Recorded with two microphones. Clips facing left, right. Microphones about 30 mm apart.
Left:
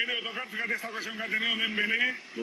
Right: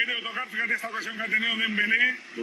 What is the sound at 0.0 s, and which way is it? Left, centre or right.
Speech, centre.